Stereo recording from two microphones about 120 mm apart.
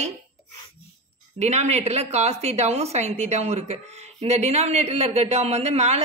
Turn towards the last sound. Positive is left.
turn(degrees=-65)  # may be behind; listen again after turning